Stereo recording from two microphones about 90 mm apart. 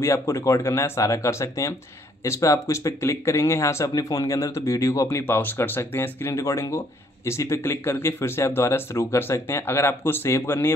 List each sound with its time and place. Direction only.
0.0 s speech: 30° left (ahead or behind)
5.0 s speech: 25° left (ahead or behind)